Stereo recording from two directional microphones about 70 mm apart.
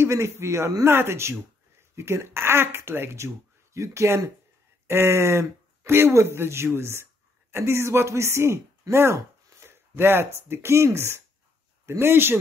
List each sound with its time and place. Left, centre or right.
0.0 s a man's voice: right
0.8 s a man's voice: right